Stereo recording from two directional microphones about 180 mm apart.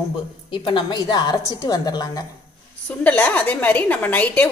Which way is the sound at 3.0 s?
10° left (ahead or behind).